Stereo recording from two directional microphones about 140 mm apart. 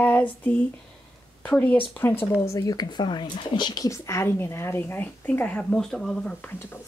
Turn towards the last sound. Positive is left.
turn(degrees=15)  # may be behind; listen again after turning